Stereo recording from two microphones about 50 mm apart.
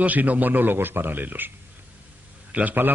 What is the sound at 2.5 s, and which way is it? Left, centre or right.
Speech, right.